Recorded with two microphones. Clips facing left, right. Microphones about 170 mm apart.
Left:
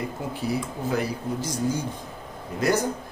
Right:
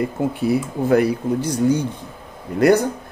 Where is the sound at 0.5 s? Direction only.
60° right (ahead or behind).